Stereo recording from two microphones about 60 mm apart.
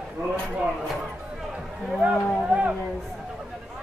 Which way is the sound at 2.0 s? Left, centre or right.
Right.